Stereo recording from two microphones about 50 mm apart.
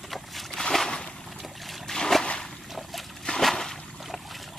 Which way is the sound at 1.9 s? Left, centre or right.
Centre.